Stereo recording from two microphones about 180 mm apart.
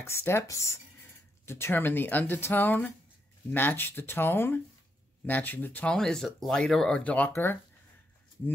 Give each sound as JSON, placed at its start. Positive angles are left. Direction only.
{"t": 0.0, "sound": "speech", "side_deg": 15}